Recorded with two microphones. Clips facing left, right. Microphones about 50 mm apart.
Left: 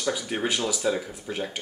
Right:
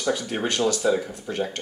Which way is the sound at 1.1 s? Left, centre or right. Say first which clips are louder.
Right 4 dB; centre.